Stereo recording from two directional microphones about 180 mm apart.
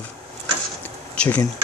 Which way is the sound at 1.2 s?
10° left (ahead or behind).